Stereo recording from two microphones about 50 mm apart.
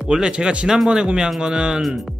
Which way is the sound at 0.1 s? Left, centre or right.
Centre.